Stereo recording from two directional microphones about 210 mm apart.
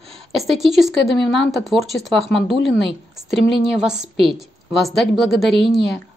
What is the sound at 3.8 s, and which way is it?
Speech, 5° right (ahead or behind).